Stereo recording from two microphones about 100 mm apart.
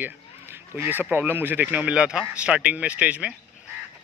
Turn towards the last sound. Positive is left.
turn(degrees=-15)  # may be behind; listen again after turning